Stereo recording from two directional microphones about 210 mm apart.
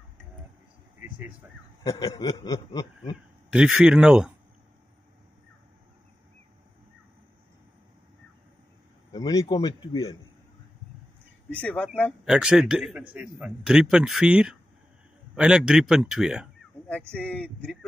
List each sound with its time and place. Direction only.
1.9 s speech: 15° left (ahead or behind)
3.4 s speech: 5° right (ahead or behind)
9.1 s speech: 15° left (ahead or behind)
11.6 s speech: 5° left (ahead or behind)